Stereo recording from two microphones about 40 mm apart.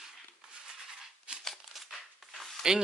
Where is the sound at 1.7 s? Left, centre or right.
Centre.